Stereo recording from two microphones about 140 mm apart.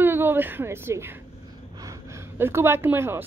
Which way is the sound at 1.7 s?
25° right (ahead or behind).